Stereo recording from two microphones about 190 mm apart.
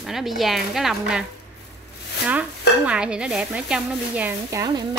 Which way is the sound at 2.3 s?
5° right (ahead or behind).